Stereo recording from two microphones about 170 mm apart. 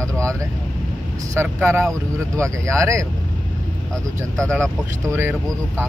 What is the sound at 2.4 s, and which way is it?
Speech, 15° right (ahead or behind).